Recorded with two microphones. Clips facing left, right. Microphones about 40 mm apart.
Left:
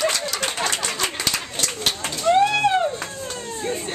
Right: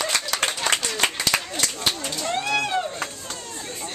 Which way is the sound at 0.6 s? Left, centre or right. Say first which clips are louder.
Right 2 dB; right.